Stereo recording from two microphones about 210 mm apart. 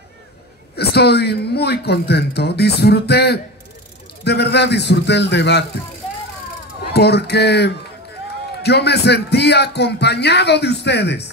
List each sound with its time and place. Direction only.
0.7 s speech: 50° left (ahead or behind)
6.9 s speech: 50° left (ahead or behind)